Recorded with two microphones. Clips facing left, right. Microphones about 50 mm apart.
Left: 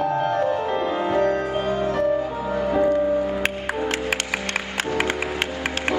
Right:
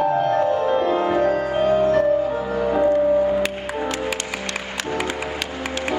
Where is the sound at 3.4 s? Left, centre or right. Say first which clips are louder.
Right 1 dB; left.